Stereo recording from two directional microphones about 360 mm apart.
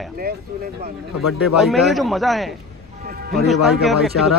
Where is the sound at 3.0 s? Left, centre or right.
Right.